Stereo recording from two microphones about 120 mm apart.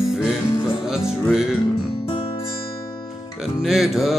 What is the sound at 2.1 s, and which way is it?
Music, 45° left (ahead or behind).